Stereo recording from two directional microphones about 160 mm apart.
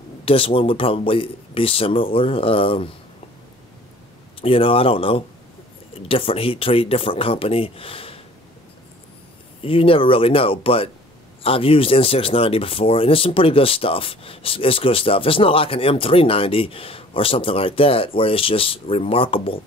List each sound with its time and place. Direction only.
0.2 s speech: 35° left (ahead or behind)
4.4 s speech: 35° left (ahead or behind)
9.6 s speech: 35° left (ahead or behind)